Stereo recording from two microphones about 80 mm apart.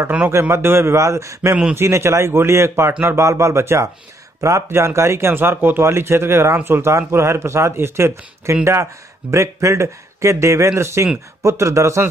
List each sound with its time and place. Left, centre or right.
0.3 s speech: right